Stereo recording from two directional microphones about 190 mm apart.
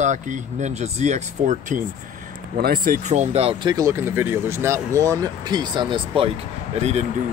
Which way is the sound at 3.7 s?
15° right (ahead or behind).